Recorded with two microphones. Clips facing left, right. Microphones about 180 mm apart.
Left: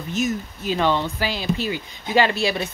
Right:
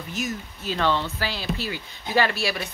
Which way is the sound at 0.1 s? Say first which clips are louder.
Left 7 dB; 20° left (ahead or behind).